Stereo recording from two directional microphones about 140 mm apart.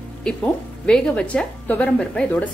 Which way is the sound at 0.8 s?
5° left (ahead or behind).